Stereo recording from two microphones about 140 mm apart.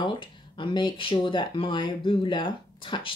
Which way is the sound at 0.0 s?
35° left (ahead or behind).